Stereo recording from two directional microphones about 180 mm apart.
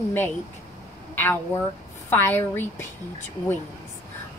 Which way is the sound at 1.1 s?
10° left (ahead or behind).